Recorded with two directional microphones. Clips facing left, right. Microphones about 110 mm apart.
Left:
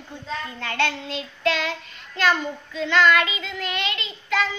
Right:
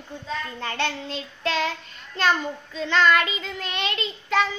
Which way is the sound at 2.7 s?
35° right (ahead or behind).